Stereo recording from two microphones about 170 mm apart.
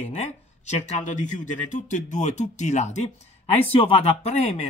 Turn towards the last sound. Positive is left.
turn(degrees=35)  # may be behind; listen again after turning